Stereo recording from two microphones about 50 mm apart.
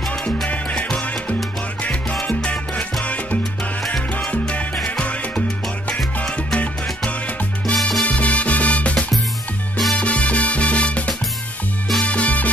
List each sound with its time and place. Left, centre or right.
0.5 s music: left
1.8 s salsa music: left
4.3 s music: left
6.3 s salsa music: left
7.6 s salsa music: centre
8.0 s music: left
9.9 s salsa music: left
12.0 s music: left